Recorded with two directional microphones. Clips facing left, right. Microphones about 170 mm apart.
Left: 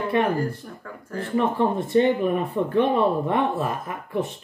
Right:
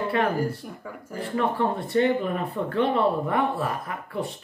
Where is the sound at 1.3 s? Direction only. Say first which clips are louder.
Left 3 dB; 20° left (ahead or behind).